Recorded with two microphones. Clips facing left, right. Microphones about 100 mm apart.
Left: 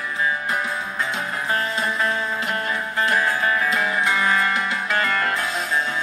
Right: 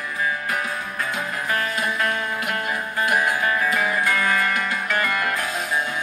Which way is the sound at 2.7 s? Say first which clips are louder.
Even; 15° right (ahead or behind).